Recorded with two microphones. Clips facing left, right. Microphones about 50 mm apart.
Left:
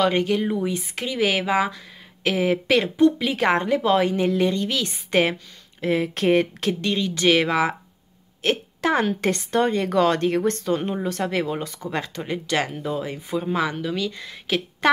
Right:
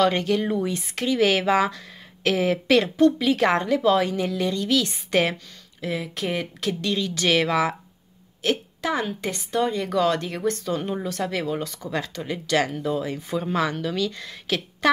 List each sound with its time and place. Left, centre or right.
0.0 s a woman's voice: centre; by 6.7 s left
6.7 s a woman's voice: left
8.4 s a sound: left
9.0 s a woman's voice: left
13.4 s speech: centre